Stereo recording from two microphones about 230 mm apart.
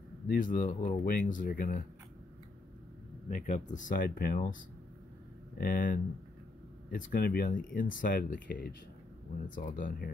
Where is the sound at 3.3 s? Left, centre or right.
Left.